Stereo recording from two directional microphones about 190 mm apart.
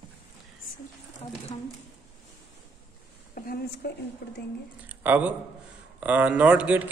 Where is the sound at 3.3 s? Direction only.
50° left (ahead or behind).